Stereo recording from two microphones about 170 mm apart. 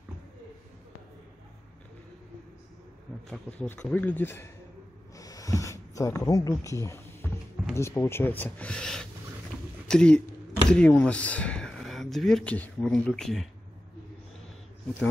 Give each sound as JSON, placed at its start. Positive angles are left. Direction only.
{"t": 3.3, "sound": "speech", "side_deg": 5}
{"t": 5.1, "sound": "a sound", "side_deg": 20}
{"t": 7.7, "sound": "speech", "side_deg": 15}